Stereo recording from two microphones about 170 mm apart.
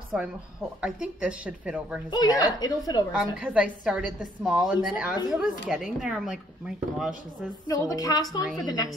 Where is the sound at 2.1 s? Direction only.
25° left (ahead or behind).